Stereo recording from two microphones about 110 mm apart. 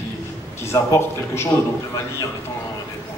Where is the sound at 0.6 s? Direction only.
25° left (ahead or behind).